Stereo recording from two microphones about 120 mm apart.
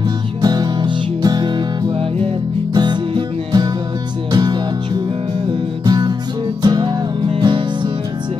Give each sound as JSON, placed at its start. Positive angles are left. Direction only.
{"t": 0.4, "sound": "music", "side_deg": -35}
{"t": 5.9, "sound": "music", "side_deg": -35}